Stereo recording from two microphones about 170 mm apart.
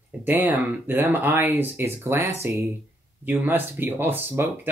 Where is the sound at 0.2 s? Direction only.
10° right (ahead or behind).